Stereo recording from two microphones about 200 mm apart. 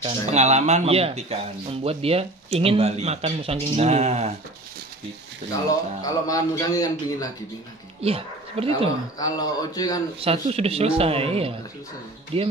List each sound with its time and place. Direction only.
0.0 s speech: 35° right (ahead or behind)
5.7 s a man's voice: 15° left (ahead or behind)
8.0 s speech: 30° right (ahead or behind)
9.2 s speech: 20° left (ahead or behind)
10.2 s speech: 30° right (ahead or behind)